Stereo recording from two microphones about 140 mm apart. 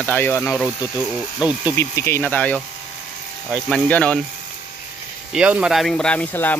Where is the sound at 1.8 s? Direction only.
20° left (ahead or behind).